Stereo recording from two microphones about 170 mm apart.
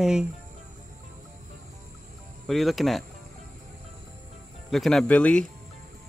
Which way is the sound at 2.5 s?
Centre (ahead or behind).